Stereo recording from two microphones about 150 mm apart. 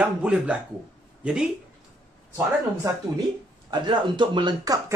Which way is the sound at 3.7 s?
35° right (ahead or behind).